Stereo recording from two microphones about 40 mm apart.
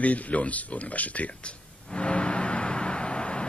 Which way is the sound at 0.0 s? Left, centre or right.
Left.